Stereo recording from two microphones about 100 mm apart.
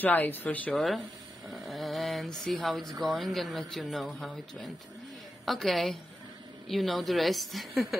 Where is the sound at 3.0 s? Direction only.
Centre (ahead or behind).